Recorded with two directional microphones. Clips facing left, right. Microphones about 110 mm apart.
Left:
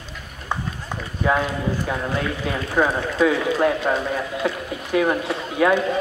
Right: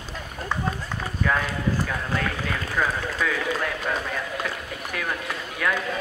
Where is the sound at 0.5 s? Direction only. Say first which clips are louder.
Left 1 dB; 20° left (ahead or behind).